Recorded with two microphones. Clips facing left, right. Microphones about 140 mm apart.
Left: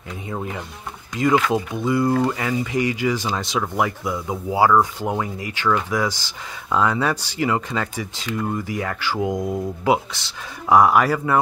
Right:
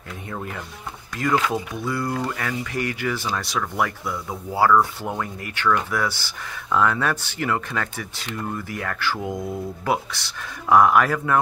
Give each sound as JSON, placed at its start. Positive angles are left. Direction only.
{"t": 0.3, "sound": "speech", "side_deg": 10}